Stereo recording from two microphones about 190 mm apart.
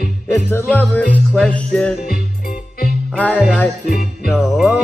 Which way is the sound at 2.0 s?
50° left (ahead or behind).